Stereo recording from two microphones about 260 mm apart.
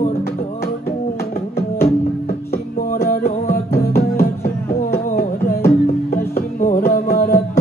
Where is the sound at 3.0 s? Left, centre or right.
Left.